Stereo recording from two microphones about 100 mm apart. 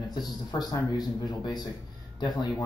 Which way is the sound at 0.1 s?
45° left (ahead or behind).